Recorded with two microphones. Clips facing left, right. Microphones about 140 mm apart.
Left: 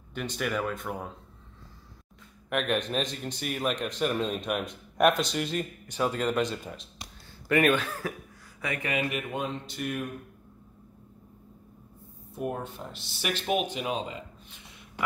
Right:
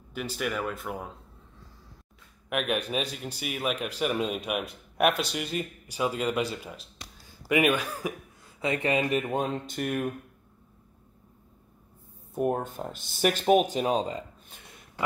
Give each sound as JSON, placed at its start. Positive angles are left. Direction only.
{"t": 0.1, "sound": "speech", "side_deg": -5}
{"t": 2.5, "sound": "a man's voice", "side_deg": -5}
{"t": 8.5, "sound": "speech", "side_deg": -25}
{"t": 9.3, "sound": "speech", "side_deg": -45}
{"t": 12.4, "sound": "speech", "side_deg": -45}